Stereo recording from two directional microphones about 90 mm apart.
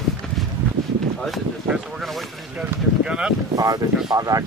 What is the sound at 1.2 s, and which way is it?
Speech, centre (ahead or behind).